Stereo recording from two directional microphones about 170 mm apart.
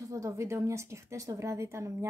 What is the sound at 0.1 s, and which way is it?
A woman's voice, 20° right (ahead or behind).